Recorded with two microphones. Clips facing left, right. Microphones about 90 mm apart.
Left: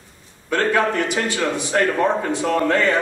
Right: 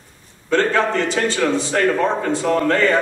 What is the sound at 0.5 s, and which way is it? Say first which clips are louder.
A man's voice: right 2 dB; 15° left (ahead or behind).